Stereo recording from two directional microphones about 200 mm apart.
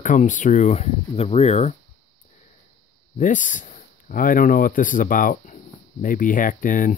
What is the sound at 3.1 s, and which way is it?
Speech, 40° left (ahead or behind).